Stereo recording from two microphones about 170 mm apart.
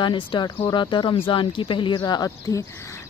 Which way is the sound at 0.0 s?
30° left (ahead or behind).